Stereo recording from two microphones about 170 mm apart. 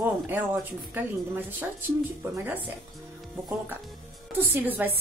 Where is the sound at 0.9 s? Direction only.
10° right (ahead or behind).